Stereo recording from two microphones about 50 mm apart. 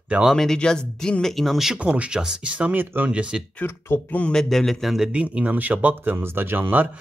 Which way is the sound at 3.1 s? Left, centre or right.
Right.